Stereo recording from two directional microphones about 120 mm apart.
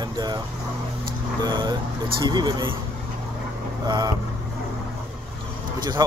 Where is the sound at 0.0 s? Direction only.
35° right (ahead or behind).